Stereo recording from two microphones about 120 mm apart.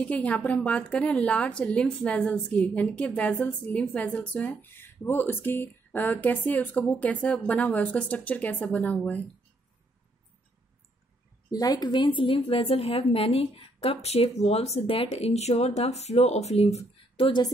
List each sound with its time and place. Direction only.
0.0 s speech: 10° left (ahead or behind)
11.5 s a woman's voice: 35° left (ahead or behind); by 17.3 s 60° left (ahead or behind)